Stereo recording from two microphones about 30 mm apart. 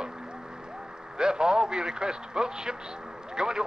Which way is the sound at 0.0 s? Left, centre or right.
Right.